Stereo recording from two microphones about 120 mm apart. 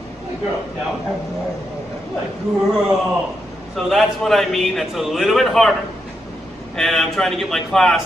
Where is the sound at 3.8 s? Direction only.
Centre (ahead or behind).